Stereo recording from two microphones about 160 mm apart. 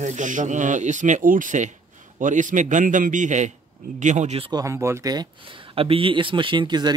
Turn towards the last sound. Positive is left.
turn(degrees=-25)  # may be behind; listen again after turning